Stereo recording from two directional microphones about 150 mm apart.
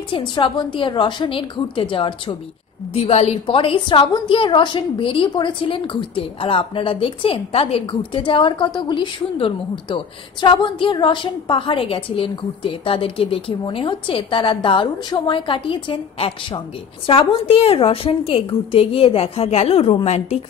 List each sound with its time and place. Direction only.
0.1 s a woman's voice: 30° left (ahead or behind)